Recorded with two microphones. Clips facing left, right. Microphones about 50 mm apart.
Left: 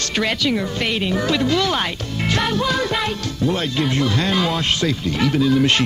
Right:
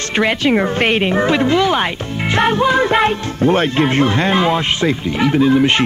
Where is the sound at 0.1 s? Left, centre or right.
Right.